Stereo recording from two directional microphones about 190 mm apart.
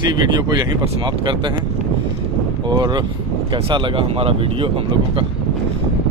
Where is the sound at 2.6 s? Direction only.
20° right (ahead or behind).